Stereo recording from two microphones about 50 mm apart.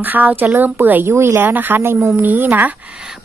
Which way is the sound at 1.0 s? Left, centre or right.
Right.